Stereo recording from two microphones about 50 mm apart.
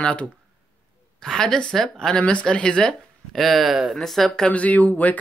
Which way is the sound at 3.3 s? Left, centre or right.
Centre.